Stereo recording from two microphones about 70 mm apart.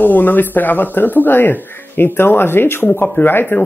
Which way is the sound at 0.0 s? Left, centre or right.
Left.